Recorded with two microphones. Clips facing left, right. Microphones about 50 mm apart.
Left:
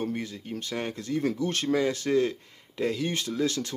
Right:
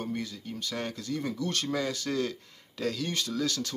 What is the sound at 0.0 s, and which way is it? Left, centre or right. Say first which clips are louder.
Speech: left 3 dB; left.